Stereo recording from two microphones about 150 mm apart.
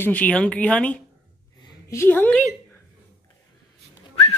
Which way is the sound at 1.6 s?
20° left (ahead or behind).